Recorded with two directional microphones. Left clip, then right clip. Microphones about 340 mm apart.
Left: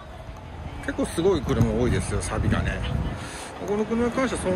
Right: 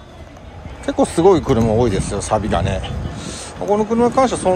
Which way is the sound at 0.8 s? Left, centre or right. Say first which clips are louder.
Right 10 dB; centre.